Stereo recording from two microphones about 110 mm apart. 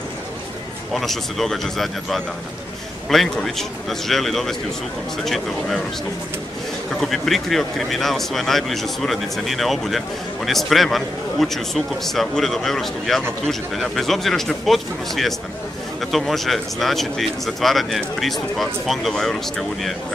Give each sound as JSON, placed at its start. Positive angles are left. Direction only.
{"t": 0.9, "sound": "speech", "side_deg": 0}
{"t": 7.0, "sound": "speech", "side_deg": 0}